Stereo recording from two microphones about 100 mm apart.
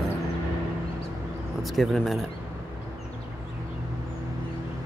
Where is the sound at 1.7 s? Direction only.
Centre (ahead or behind).